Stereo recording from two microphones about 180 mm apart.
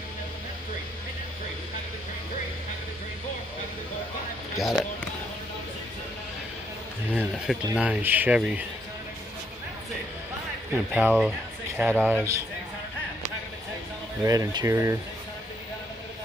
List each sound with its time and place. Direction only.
4.6 s speech: centre (ahead or behind)
7.7 s speech: 5° right (ahead or behind)
10.7 s speech: 10° right (ahead or behind)
14.2 s speech: 20° right (ahead or behind)